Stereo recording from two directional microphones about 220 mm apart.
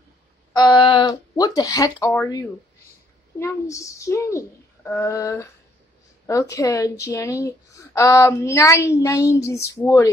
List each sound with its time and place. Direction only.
0.6 s speech: 20° left (ahead or behind)